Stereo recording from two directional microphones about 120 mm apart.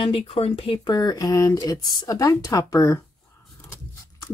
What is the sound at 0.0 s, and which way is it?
Speech, 55° left (ahead or behind).